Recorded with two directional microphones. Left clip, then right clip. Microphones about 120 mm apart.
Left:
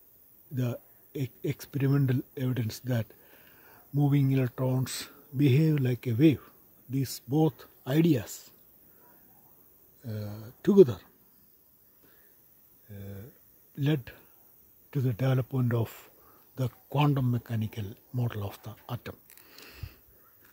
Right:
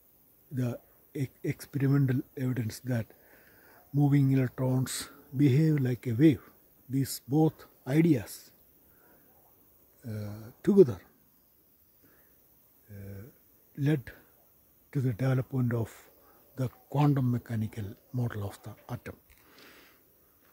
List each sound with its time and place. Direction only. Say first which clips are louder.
0.6 s speech: left 1 dB; 15° right (ahead or behind)
5.5 s speech: left 1 dB; 5° right (ahead or behind)
10.0 s speech: left 1 dB; 10° right (ahead or behind)
12.9 s speech: left 2 dB; centre (ahead or behind)
16.5 s speech: left 2 dB; 10° right (ahead or behind)
19.6 s a sound: left 4 dB; 5° right (ahead or behind)